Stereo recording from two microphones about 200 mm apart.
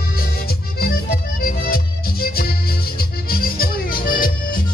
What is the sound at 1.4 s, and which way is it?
Music, 50° left (ahead or behind).